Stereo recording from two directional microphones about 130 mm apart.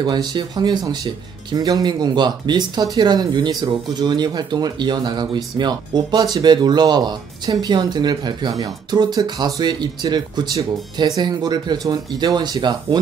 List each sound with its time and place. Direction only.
0.0 s speech: 35° right (ahead or behind)